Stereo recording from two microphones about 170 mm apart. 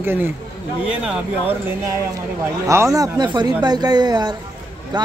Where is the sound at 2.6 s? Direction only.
20° right (ahead or behind).